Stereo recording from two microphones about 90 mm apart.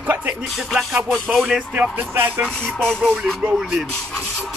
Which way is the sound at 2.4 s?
10° left (ahead or behind).